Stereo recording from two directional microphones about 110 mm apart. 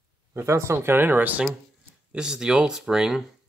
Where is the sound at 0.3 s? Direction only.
25° right (ahead or behind).